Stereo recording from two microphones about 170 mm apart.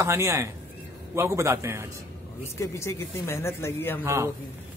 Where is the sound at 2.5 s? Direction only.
15° left (ahead or behind).